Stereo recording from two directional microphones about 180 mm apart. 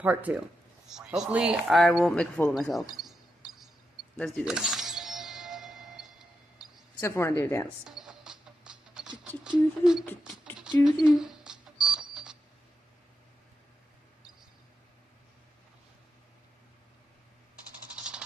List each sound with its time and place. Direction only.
0.0 s speech: 10° right (ahead or behind)
4.2 s music: centre (ahead or behind)
7.0 s a woman's voice: 15° left (ahead or behind)
8.0 s music: 5° right (ahead or behind)
9.4 s speech: 5° right (ahead or behind)
11.1 s a sound: 5° right (ahead or behind)
17.9 s a sound: 5° right (ahead or behind)